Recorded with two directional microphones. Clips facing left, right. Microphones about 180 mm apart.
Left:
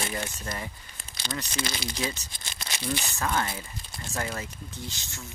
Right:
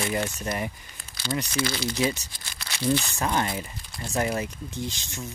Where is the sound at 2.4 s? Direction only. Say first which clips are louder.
Left 1 dB; 20° left (ahead or behind).